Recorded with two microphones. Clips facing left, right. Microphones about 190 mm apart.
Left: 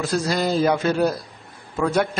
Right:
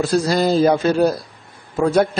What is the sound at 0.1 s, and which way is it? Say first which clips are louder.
A man's voice: right 4 dB; 35° right (ahead or behind).